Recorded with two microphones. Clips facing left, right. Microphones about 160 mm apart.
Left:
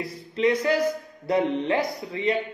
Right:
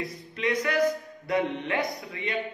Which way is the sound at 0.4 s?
30° left (ahead or behind).